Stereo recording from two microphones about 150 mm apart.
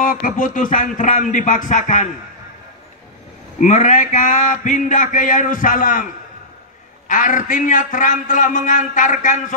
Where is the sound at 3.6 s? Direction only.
55° left (ahead or behind).